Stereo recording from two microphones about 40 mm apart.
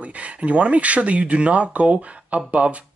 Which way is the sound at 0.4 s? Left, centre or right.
Right.